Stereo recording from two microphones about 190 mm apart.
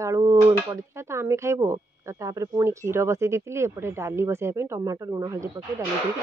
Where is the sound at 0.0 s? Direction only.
15° right (ahead or behind).